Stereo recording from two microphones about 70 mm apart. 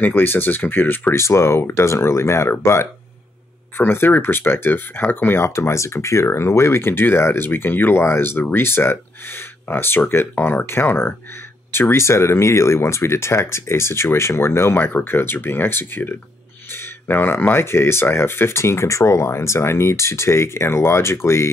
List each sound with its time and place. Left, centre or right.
0.0 s speech: left
1.1 s speech: left
14.9 s speech: left